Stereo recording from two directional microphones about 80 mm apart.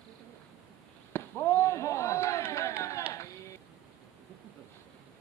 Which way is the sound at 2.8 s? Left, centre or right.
Left.